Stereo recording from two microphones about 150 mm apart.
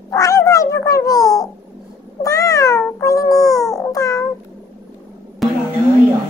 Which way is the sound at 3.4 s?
Centre (ahead or behind).